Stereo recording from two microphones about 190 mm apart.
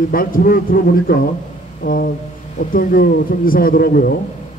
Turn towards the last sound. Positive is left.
turn(degrees=50)  # may be behind; listen again after turning